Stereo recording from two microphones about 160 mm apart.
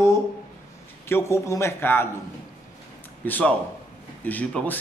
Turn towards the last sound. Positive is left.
turn(degrees=10)  # may be behind; listen again after turning